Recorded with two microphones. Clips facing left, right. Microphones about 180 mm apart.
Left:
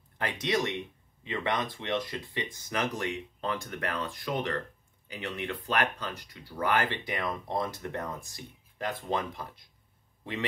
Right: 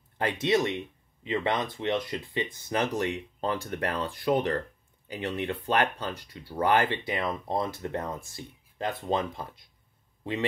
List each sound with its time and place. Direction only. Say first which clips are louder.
0.2 s speech: right 4 dB; 25° right (ahead or behind)